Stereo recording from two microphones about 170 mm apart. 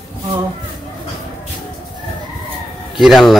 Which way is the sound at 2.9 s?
Centre (ahead or behind).